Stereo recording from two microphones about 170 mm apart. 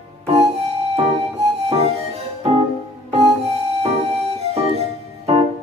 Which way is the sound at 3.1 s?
40° right (ahead or behind).